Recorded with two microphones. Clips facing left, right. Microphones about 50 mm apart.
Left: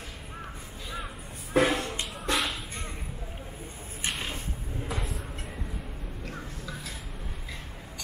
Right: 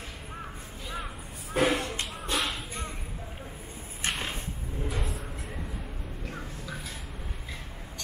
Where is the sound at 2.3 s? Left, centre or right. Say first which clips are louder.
Left 1 dB; centre.